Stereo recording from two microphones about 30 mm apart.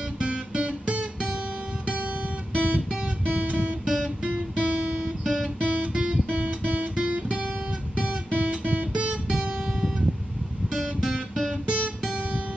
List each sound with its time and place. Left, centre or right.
0.2 s guitar: right
2.5 s guitar: right
3.8 s guitar: centre
4.2 s music: right
5.2 s guitar: centre
5.6 s guitar: right
9.3 s music: centre